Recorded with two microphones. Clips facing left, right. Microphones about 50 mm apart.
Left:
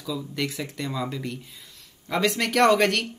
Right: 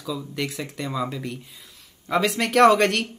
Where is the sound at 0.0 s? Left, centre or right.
Centre.